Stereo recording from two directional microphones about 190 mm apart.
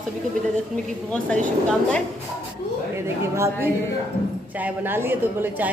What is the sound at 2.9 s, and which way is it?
A woman's voice, 15° right (ahead or behind).